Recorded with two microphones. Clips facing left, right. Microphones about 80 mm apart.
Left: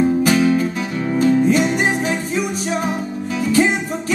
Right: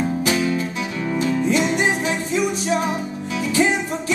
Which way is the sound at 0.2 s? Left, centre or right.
Left.